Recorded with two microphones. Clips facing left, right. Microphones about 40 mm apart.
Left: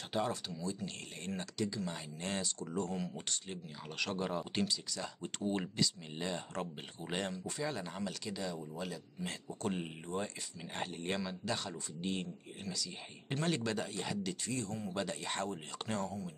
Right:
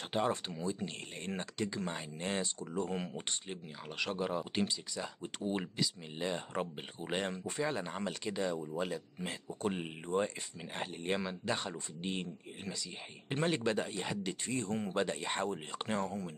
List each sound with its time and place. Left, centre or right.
0.1 s speech: right
4.0 s speech: centre
4.6 s speech: centre
9.6 s speech: centre
10.7 s speech: centre
11.1 s speech: right
15.0 s speech: right
16.1 s speech: right